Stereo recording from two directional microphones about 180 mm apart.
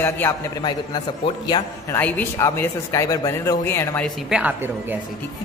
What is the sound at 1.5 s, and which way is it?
A woman's voice, 10° left (ahead or behind).